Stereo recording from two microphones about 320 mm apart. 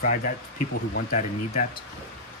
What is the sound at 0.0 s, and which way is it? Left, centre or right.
Speech, left.